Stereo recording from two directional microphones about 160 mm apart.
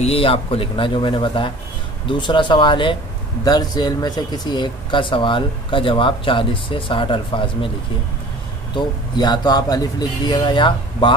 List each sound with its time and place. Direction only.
0.0 s speech: 35° left (ahead or behind)
8.7 s speech: 25° left (ahead or behind)